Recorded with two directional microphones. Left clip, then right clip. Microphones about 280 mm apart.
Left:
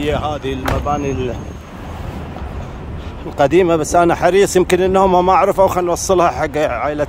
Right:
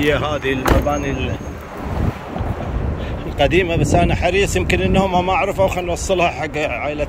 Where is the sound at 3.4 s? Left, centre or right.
Left.